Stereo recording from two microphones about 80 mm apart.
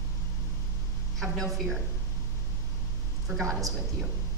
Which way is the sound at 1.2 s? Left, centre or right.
Centre.